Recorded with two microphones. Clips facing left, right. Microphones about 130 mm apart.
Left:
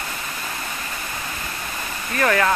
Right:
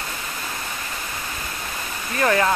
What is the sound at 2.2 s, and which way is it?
Speech, 20° right (ahead or behind).